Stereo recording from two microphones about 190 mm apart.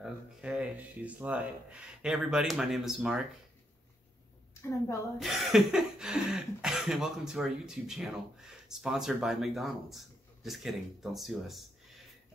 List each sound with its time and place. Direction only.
0.0 s speech: 5° right (ahead or behind)
4.6 s a woman's voice: 15° left (ahead or behind)
5.2 s speech: centre (ahead or behind)